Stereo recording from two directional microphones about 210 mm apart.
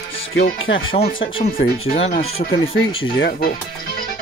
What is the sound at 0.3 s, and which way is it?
Speech, 65° left (ahead or behind).